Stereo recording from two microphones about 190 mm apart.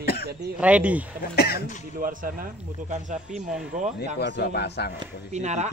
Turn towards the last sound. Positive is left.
turn(degrees=-35)  # may be behind; listen again after turning